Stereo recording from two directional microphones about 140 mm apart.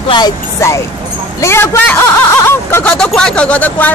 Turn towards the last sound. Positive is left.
turn(degrees=10)  # may be behind; listen again after turning